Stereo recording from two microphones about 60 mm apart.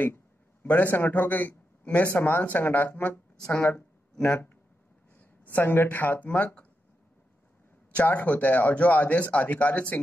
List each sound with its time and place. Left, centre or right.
0.0 s a man's voice: left
5.2 s speech: left
7.9 s speech: left